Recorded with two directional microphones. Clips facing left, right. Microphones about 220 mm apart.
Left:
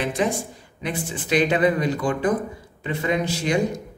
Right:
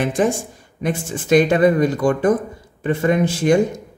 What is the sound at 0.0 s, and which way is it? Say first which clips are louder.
Speech: right 5 dB; 45° right (ahead or behind).